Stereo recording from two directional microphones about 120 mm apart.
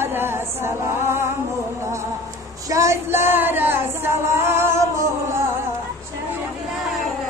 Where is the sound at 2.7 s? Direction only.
25° right (ahead or behind).